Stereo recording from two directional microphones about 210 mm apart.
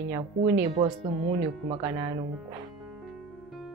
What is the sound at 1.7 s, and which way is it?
Speech, 20° right (ahead or behind).